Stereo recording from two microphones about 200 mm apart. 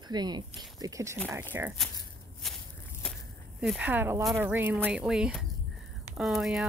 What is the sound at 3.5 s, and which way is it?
Speech, 5° right (ahead or behind).